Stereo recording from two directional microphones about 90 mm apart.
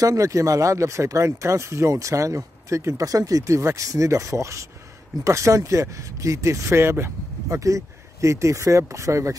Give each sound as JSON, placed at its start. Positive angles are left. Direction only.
{"t": 0.0, "sound": "speech", "side_deg": -40}